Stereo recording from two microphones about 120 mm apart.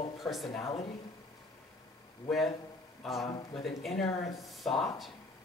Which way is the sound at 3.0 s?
Centre (ahead or behind).